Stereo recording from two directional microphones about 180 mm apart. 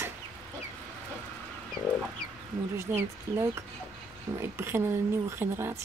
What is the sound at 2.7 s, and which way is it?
Speech, 15° right (ahead or behind).